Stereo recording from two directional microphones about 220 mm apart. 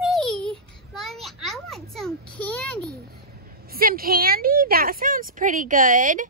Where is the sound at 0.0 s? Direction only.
Centre (ahead or behind).